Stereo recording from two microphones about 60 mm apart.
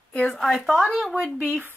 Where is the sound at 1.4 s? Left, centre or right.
Right.